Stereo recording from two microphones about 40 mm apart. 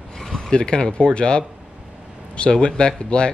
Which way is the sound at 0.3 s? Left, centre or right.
Left.